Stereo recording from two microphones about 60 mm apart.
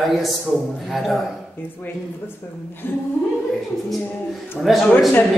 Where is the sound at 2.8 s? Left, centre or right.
Left.